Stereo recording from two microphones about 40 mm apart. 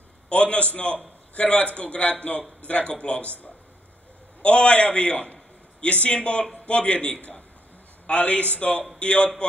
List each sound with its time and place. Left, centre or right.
0.3 s a man's voice: left
4.4 s a man's voice: left